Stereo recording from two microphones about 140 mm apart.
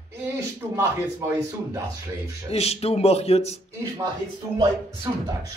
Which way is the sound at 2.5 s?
50° left (ahead or behind).